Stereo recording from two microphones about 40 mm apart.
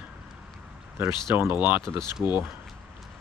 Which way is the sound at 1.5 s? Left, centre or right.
Right.